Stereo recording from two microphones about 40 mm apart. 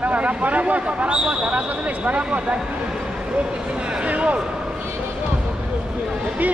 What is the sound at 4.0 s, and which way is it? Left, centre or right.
Speech, right.